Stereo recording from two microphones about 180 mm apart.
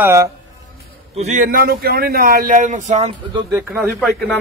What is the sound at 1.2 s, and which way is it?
Speech, 45° right (ahead or behind).